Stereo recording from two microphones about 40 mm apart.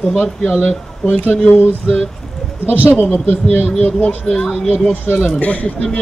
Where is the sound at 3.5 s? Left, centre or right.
Left.